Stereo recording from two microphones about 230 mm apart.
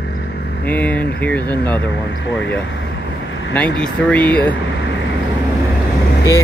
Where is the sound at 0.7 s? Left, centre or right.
Centre.